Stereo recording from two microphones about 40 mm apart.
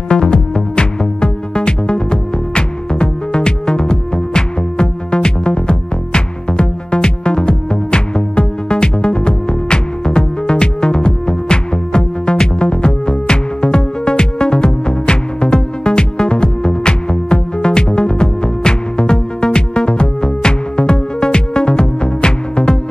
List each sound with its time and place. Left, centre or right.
0.1 s music: left